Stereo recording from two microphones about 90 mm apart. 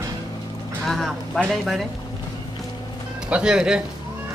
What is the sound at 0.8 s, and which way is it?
Speech, 5° left (ahead or behind).